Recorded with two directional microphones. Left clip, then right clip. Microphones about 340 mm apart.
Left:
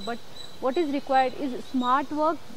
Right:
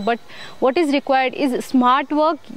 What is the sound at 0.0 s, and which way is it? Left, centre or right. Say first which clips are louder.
Speech: right 13 dB; right.